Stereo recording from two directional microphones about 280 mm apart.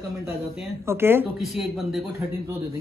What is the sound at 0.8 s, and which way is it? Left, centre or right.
A man's voice, centre.